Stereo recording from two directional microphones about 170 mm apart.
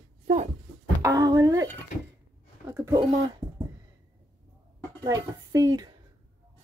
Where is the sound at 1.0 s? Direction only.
20° right (ahead or behind).